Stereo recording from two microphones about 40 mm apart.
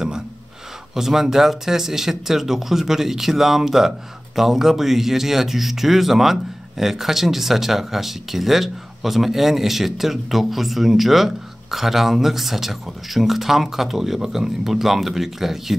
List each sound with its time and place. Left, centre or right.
0.9 s speech: centre